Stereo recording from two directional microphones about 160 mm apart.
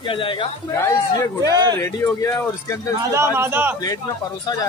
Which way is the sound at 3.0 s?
15° right (ahead or behind).